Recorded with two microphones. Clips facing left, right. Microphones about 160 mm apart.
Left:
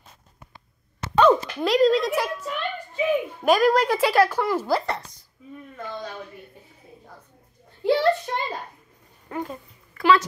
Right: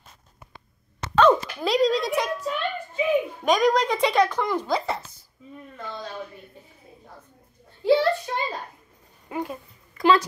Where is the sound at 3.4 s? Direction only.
5° left (ahead or behind).